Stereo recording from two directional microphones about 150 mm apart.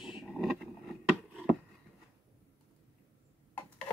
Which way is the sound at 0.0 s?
Centre (ahead or behind).